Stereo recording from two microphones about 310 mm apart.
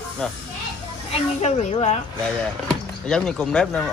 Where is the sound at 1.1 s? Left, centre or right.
Centre.